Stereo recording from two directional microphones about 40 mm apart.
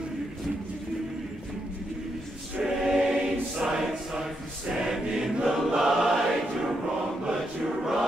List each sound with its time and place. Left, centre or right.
2.6 s choir: centre
3.8 s choir: centre